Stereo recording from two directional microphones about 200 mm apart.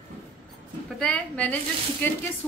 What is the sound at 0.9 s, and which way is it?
A woman's voice, 5° left (ahead or behind).